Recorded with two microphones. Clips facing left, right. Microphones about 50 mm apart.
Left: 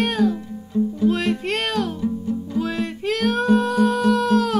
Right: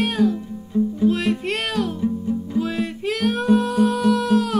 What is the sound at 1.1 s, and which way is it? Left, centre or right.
Music, centre.